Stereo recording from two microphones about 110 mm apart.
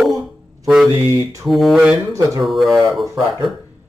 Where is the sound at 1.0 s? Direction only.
25° right (ahead or behind).